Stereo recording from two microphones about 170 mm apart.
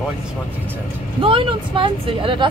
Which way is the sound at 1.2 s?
30° right (ahead or behind).